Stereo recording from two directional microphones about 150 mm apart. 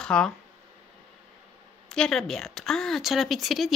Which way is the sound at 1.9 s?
5° left (ahead or behind).